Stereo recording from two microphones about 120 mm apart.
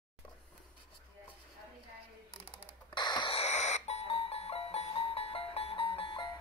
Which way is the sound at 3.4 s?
70° left (ahead or behind).